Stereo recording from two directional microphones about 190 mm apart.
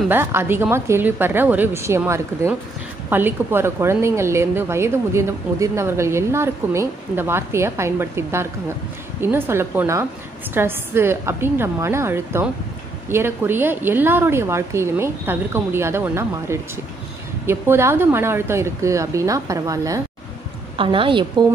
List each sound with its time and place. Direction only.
0.1 s a woman's voice: 10° right (ahead or behind)
20.7 s a woman's voice: 25° right (ahead or behind)